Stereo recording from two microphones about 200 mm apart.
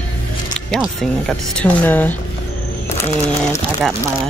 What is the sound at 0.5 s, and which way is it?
Speech, 5° left (ahead or behind).